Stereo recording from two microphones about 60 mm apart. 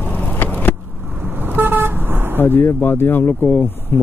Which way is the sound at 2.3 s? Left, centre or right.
Left.